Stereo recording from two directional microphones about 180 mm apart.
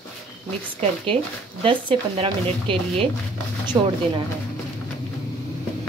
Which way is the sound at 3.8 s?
20° right (ahead or behind).